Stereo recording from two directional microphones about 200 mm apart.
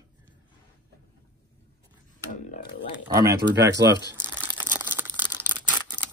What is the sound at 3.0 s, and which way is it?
Speech, 15° right (ahead or behind).